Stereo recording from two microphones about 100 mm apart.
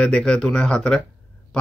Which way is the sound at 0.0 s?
10° left (ahead or behind).